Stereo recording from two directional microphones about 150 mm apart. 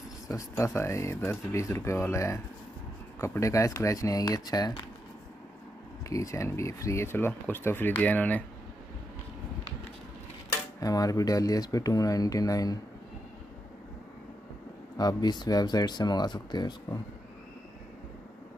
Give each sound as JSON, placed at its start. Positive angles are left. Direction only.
{"t": 0.3, "sound": "speech", "side_deg": 20}
{"t": 6.0, "sound": "speech", "side_deg": 20}
{"t": 10.8, "sound": "speech", "side_deg": 25}
{"t": 15.0, "sound": "speech", "side_deg": 25}